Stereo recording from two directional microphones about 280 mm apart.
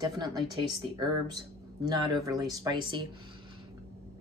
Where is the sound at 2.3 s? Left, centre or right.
Centre.